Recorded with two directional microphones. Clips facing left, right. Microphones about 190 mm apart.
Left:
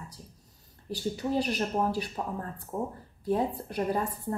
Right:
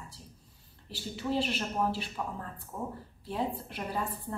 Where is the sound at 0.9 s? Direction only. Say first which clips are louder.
Left 3 dB; 45° left (ahead or behind).